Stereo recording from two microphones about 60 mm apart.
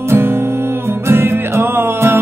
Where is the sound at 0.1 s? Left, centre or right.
Right.